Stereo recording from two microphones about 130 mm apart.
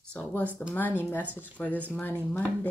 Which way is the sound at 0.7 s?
15° left (ahead or behind).